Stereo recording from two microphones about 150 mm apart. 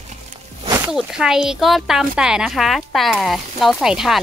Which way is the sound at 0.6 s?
20° right (ahead or behind).